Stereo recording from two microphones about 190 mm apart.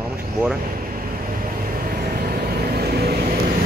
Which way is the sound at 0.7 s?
50° right (ahead or behind).